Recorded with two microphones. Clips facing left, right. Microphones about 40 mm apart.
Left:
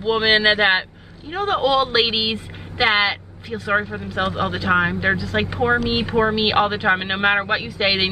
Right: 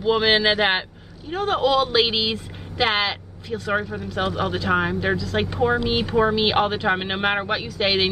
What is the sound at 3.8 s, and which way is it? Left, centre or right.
Speech, left.